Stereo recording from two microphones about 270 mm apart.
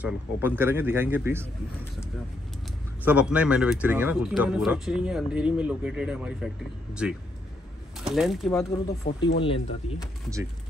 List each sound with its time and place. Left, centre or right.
0.0 s speech: centre
3.1 s speech: centre
9.1 s speech: left